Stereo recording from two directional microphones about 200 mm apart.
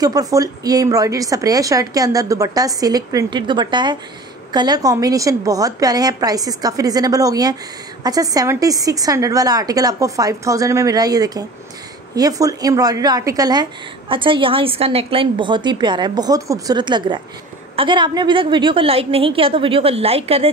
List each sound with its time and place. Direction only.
0.0 s a woman's voice: 20° right (ahead or behind)